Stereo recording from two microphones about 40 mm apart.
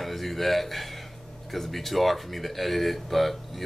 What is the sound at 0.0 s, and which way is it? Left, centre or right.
Speech, centre.